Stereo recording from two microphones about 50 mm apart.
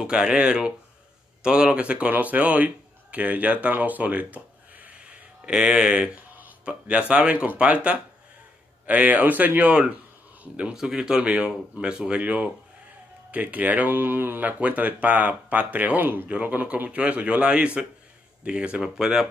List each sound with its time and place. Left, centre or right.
0.0 s a man's voice: centre; by 6.5 s right
6.6 s a man's voice: right
10.4 s a man's voice: right
16.3 s a man's voice: right
18.8 s speech: centre